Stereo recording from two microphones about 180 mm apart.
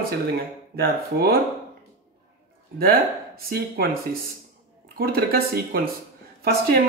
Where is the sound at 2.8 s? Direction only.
55° right (ahead or behind).